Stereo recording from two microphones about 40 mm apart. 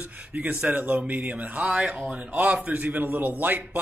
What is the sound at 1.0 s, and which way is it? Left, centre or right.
Speech, right.